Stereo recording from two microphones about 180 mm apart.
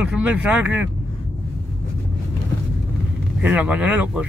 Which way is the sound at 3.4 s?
5° right (ahead or behind).